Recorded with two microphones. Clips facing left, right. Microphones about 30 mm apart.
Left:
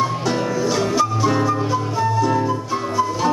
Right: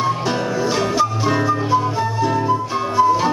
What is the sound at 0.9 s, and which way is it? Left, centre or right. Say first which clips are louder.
Music: even; centre.